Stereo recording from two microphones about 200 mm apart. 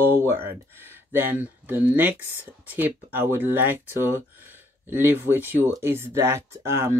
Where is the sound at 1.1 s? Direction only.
10° right (ahead or behind).